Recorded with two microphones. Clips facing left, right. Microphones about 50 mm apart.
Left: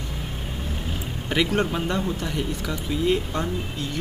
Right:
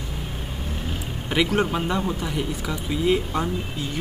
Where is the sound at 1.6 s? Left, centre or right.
Centre.